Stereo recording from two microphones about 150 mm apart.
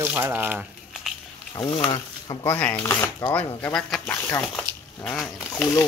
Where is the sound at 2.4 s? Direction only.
15° left (ahead or behind).